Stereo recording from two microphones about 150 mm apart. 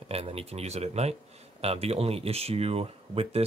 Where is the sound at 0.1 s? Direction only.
40° right (ahead or behind).